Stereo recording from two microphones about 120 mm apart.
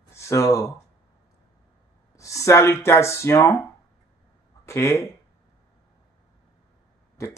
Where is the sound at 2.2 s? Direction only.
25° left (ahead or behind).